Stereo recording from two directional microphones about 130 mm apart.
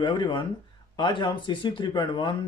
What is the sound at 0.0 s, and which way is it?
Speech, 40° left (ahead or behind).